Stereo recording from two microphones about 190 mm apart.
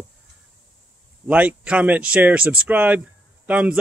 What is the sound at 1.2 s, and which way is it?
Speech, 5° right (ahead or behind).